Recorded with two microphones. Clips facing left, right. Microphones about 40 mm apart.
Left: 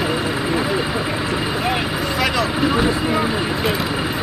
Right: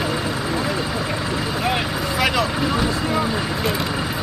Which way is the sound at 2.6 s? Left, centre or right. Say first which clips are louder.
Left 3 dB; centre.